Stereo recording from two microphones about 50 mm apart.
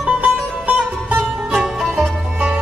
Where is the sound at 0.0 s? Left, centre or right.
Right.